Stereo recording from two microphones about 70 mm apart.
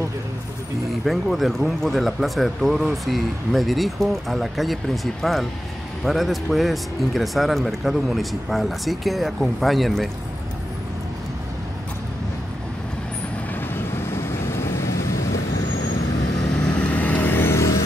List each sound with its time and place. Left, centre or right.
1.0 s speech: centre
13.6 s vehicle: left
16.5 s vehicle: centre; by 17.6 s left